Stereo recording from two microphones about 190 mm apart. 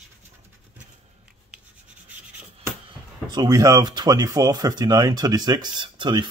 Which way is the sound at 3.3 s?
20° right (ahead or behind).